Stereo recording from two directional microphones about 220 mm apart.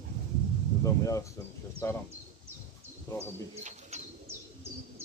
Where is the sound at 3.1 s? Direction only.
15° left (ahead or behind).